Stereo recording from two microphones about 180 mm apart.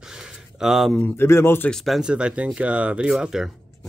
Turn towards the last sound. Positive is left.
turn(degrees=-5)  # may be behind; listen again after turning